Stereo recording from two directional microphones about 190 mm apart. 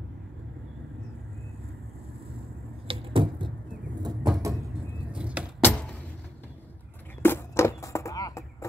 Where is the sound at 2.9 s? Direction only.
30° right (ahead or behind).